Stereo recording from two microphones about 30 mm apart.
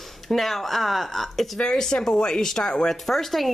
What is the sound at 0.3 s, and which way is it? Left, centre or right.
Speech, centre.